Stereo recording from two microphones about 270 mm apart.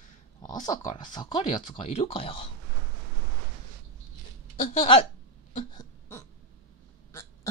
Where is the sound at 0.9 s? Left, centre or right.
Centre.